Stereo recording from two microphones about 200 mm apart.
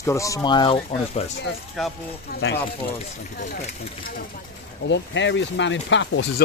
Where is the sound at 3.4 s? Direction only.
40° left (ahead or behind).